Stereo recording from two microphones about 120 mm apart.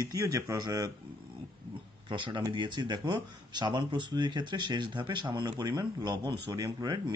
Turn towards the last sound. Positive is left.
turn(degrees=-35)  # may be behind; listen again after turning